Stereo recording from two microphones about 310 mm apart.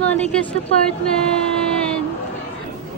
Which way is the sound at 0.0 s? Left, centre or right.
Centre.